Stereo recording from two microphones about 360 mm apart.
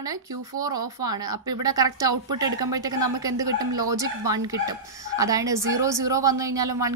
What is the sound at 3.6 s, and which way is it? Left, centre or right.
Speech, right.